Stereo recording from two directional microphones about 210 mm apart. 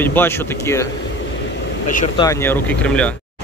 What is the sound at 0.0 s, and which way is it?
Speech, 10° left (ahead or behind).